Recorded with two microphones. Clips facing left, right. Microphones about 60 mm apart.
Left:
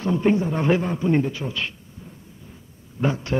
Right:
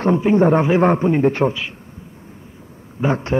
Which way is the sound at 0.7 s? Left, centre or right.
Right.